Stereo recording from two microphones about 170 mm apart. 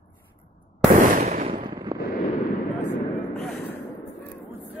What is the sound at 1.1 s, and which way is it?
Fireworks, 50° right (ahead or behind).